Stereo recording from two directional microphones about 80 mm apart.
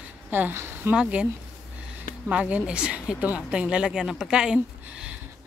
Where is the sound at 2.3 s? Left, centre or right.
Centre.